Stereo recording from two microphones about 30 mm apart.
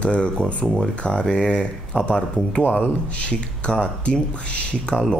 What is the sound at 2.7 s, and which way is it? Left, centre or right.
Speech, left.